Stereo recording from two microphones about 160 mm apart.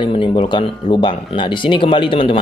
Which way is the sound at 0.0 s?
35° left (ahead or behind).